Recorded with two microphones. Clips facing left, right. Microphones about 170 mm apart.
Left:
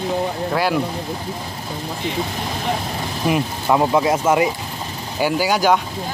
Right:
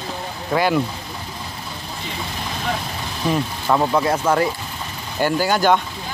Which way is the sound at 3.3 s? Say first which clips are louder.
Left 1 dB; 10° left (ahead or behind).